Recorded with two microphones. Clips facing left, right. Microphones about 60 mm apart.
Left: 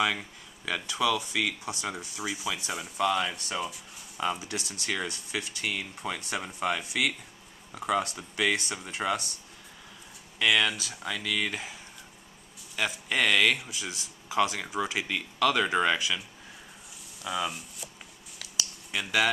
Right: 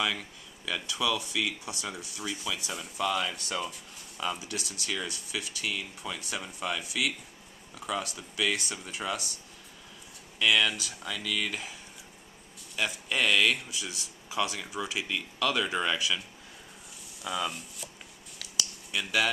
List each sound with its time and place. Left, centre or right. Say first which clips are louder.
0.0 s speech: left 3 dB; left
2.1 s speech: left 2 dB; centre
4.2 s speech: left 3 dB; left
10.7 s speech: left 2 dB; centre
12.7 s speech: left 2 dB; left
17.2 s speech: left 1 dB; centre
18.9 s speech: left 2 dB; centre